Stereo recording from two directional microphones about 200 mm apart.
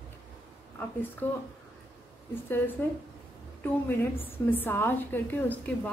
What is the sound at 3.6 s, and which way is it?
A woman's voice, 10° left (ahead or behind).